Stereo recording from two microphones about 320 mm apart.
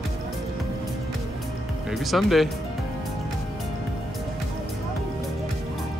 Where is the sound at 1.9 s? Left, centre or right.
Centre.